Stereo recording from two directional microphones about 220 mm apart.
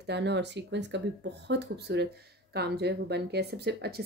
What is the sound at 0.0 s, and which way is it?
Speech, 50° right (ahead or behind).